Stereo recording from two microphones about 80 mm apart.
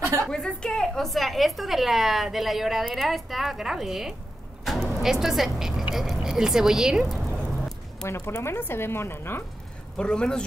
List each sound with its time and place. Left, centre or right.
0.2 s a woman's voice: centre
4.6 s vehicle: centre
5.0 s speech: centre
8.0 s speech: left
9.9 s speech: centre